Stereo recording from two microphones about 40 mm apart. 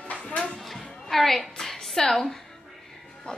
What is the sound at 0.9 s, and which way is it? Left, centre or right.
Music, centre.